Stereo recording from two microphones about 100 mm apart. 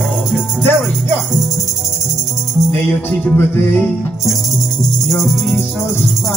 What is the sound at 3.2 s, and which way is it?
Music, 20° left (ahead or behind).